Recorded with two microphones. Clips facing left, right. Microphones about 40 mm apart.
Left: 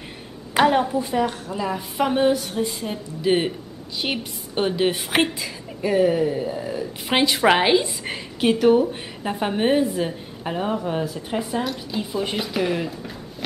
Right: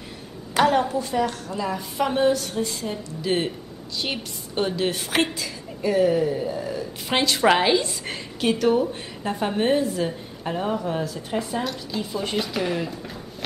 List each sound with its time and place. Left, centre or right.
0.6 s a woman's voice: centre